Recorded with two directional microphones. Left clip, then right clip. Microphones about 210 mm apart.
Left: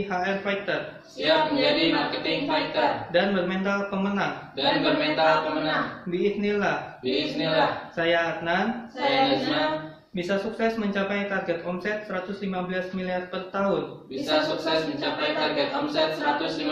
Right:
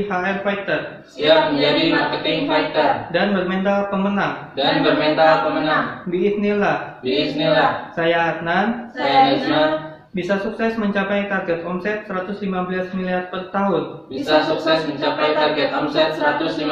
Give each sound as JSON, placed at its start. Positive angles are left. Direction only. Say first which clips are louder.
{"t": 0.2, "sound": "speech", "louder": "right 5 dB", "side_deg": 15}
{"t": 1.2, "sound": "a woman's voice", "louder": "right 7 dB", "side_deg": 0}
{"t": 3.1, "sound": "speech", "louder": "right 4 dB", "side_deg": 15}
{"t": 4.6, "sound": "a woman's voice", "louder": "right 6 dB", "side_deg": 0}
{"t": 6.1, "sound": "speech", "louder": "right 6 dB", "side_deg": 15}
{"t": 7.1, "sound": "a woman's voice", "louder": "right 8 dB", "side_deg": 0}
{"t": 8.0, "sound": "speech", "louder": "right 5 dB", "side_deg": 15}
{"t": 8.6, "sound": "a woman's voice", "louder": "right 5 dB", "side_deg": 0}
{"t": 10.1, "sound": "speech", "louder": "right 6 dB", "side_deg": 15}
{"t": 12.7, "sound": "speech", "louder": "right 6 dB", "side_deg": 15}
{"t": 14.1, "sound": "a woman's voice", "louder": "right 7 dB", "side_deg": 0}